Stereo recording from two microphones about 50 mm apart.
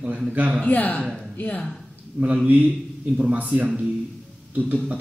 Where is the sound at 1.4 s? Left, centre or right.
Left.